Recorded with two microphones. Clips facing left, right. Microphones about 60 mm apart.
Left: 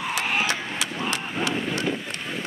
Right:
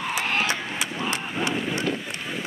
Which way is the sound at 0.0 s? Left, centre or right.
Centre.